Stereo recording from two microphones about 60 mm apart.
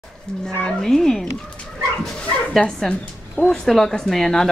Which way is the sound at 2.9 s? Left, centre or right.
Centre.